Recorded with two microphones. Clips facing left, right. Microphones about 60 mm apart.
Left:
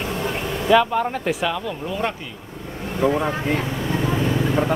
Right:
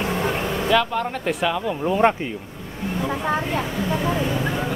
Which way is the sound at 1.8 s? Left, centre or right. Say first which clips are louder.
Right 8 dB; right.